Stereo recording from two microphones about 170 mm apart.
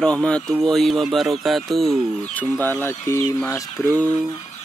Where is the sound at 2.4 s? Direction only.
10° left (ahead or behind).